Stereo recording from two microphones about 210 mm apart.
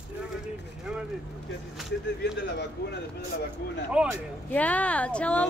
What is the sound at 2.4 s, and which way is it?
Speech, 55° left (ahead or behind).